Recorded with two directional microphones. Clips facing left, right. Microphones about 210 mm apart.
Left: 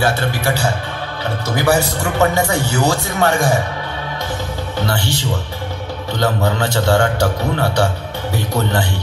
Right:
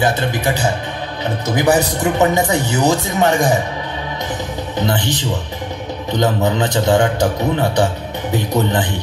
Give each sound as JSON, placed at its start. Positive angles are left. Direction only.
{"t": 0.0, "sound": "a man's voice", "side_deg": -20}
{"t": 4.7, "sound": "a man's voice", "side_deg": -20}